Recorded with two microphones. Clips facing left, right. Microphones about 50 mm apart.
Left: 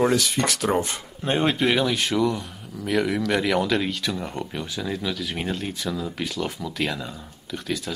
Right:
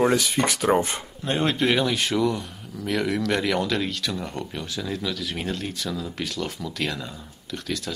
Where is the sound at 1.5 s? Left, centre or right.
Centre.